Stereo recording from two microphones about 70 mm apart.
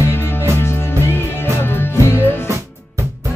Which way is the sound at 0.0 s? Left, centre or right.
Left.